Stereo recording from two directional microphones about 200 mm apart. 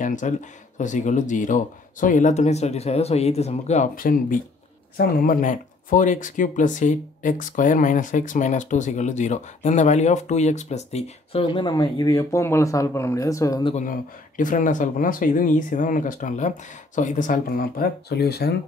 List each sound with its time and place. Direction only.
0.0 s speech: 40° left (ahead or behind); by 13.7 s 20° left (ahead or behind)
13.7 s speech: 40° left (ahead or behind)